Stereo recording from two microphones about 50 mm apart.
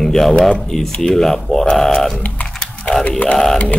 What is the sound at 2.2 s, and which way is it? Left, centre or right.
Typing, left.